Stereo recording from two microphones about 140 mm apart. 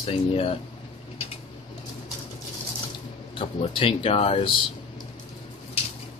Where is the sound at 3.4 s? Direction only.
40° left (ahead or behind).